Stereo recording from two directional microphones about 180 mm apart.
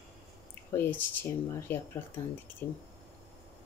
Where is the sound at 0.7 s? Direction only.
10° left (ahead or behind).